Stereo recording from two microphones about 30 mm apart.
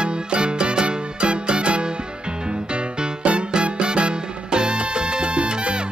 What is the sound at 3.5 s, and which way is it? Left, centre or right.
Music, right.